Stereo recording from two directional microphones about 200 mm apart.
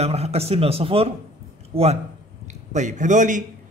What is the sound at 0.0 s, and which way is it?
A man's voice, 30° right (ahead or behind).